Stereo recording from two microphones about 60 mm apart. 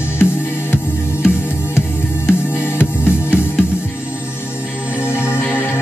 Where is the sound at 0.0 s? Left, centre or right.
Left.